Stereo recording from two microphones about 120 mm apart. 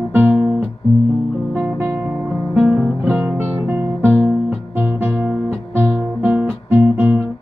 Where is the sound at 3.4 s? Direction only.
20° right (ahead or behind).